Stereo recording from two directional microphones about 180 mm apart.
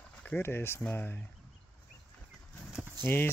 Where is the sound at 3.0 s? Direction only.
10° left (ahead or behind).